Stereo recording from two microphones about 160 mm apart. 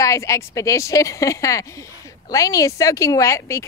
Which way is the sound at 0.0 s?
20° left (ahead or behind).